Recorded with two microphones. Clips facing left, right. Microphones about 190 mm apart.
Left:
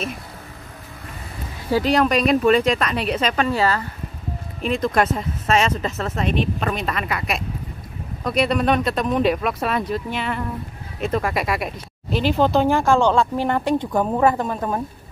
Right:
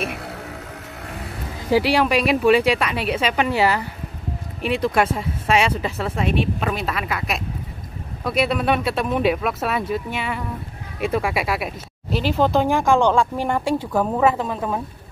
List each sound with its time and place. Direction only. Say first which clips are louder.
0.0 s vehicle: right 2 dB; 70° right (ahead or behind)
1.7 s speech: even; 10° right (ahead or behind)
4.8 s speech: even; 10° right (ahead or behind)